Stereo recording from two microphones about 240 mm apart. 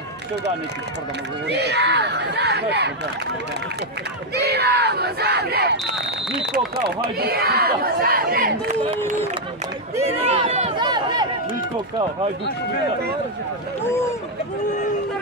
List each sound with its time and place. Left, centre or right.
1.5 s battle cry: right
4.4 s battle cry: right
6.5 s speech: right
10.0 s speech: right